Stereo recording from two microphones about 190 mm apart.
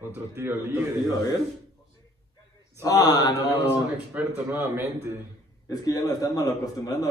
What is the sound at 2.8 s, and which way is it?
Speech, 20° left (ahead or behind).